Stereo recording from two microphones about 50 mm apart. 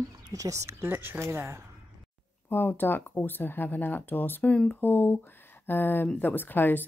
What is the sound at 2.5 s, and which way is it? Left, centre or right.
Speech, left.